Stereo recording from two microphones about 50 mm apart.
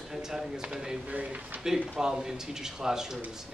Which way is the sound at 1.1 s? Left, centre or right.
Right.